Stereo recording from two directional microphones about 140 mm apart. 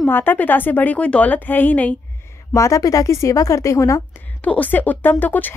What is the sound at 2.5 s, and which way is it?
A woman's voice, 20° left (ahead or behind).